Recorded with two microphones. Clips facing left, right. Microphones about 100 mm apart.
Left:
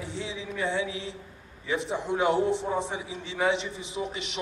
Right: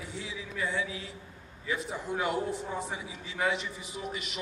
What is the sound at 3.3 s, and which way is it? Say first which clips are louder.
A man's voice: left 4 dB; 25° left (ahead or behind).